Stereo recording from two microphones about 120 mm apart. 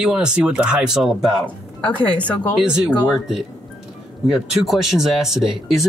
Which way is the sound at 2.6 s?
5° right (ahead or behind).